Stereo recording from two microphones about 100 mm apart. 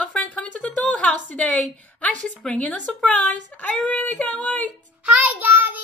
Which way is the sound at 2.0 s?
10° left (ahead or behind).